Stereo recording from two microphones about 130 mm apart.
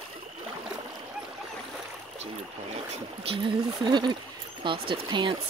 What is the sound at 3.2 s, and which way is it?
Speech, 40° right (ahead or behind).